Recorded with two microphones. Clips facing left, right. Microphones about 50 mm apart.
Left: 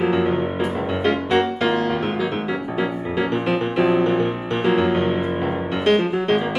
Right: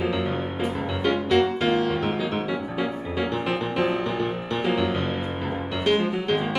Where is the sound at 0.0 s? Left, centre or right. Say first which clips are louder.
Left 6 dB; left.